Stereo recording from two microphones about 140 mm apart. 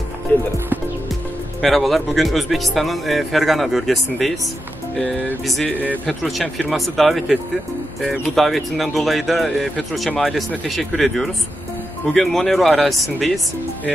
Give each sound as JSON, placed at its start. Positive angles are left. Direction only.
{"t": 0.3, "sound": "speech", "side_deg": 15}
{"t": 1.6, "sound": "speech", "side_deg": 0}